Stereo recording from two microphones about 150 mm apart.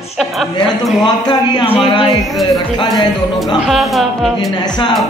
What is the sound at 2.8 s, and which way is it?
Speech, 30° left (ahead or behind).